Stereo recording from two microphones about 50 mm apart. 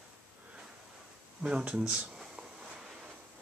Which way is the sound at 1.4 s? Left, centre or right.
Right.